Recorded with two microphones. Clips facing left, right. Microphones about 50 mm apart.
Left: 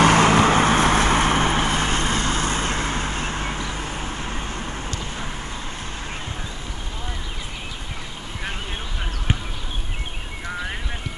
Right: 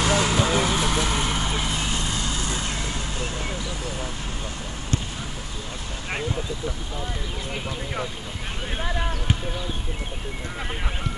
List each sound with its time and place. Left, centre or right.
0.0 s vehicle: left